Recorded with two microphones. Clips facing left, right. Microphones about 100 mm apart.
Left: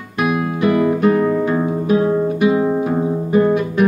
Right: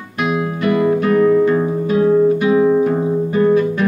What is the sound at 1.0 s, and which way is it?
Music, 20° left (ahead or behind).